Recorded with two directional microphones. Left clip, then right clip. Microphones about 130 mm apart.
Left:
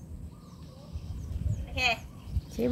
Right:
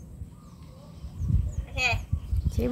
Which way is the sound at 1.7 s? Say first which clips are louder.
Right 1 dB; 10° right (ahead or behind).